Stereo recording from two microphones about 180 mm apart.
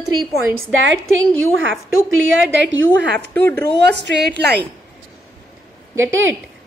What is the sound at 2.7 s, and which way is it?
Speech, 90° right.